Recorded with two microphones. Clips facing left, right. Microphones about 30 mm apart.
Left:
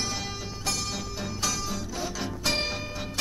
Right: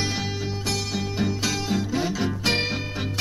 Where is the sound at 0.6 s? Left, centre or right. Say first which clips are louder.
Right 2 dB; right.